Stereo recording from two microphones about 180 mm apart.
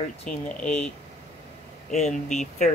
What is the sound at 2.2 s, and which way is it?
Speech, 40° left (ahead or behind).